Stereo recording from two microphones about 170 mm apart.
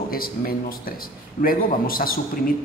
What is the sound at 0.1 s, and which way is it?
A man's voice, 60° left (ahead or behind).